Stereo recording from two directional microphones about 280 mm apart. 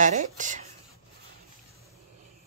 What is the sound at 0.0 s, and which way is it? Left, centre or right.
Speech, right.